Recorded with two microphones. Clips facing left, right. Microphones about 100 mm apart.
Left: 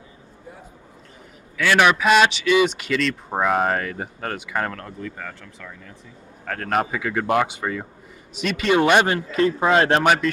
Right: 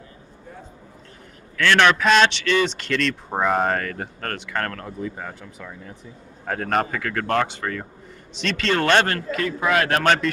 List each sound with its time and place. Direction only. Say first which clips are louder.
1.6 s a man's voice: even; 10° left (ahead or behind)
5.0 s a man's voice: right 4 dB; 15° right (ahead or behind)
6.7 s a man's voice: left 2 dB; 5° left (ahead or behind)
9.3 s a man's voice: left 6 dB; 25° left (ahead or behind)
10.0 s a man's voice: left 1 dB; 5° left (ahead or behind)